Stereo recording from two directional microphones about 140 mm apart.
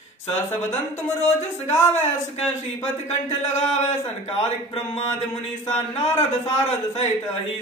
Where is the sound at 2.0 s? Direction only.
50° left (ahead or behind).